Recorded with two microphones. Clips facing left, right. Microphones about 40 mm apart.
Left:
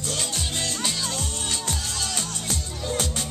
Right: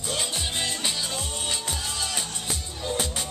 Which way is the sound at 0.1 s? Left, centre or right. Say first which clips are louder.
Right 1 dB; centre.